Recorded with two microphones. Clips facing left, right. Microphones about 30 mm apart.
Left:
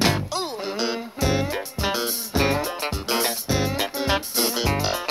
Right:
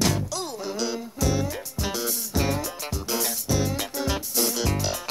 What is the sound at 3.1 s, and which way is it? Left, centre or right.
Music, left.